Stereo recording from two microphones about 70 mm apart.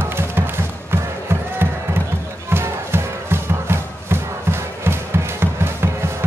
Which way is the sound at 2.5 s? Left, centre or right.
Right.